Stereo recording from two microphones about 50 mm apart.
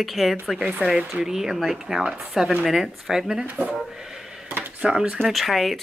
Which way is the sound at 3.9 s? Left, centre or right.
Centre.